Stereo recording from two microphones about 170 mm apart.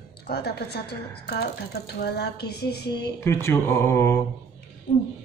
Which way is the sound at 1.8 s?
75° left (ahead or behind).